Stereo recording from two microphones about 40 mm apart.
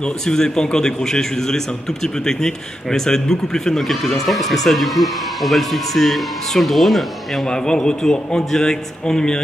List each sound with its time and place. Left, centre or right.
0.0 s a man's voice: centre
7.4 s a man's voice: centre